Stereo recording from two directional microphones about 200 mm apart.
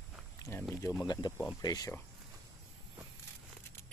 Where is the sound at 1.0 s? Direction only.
20° left (ahead or behind).